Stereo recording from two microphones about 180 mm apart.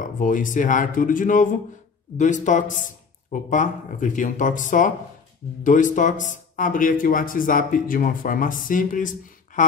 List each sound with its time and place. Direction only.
0.0 s speech: 45° left (ahead or behind)